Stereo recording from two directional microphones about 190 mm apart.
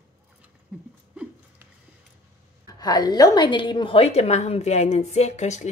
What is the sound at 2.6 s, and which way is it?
A woman's voice, 20° left (ahead or behind).